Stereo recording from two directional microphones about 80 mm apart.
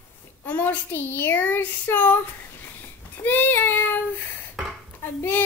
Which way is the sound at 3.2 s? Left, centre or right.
Left.